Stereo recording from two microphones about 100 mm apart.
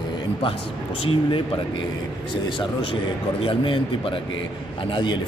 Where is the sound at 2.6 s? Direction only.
60° left (ahead or behind).